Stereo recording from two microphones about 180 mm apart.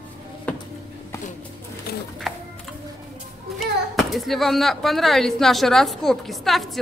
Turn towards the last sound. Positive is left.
turn(degrees=0)  # may be behind; listen again after turning